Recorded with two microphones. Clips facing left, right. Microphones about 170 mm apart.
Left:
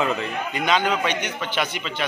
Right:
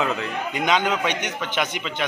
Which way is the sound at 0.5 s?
15° right (ahead or behind).